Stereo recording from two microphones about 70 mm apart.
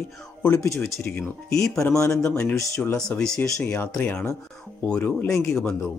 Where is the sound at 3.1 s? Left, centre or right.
Centre.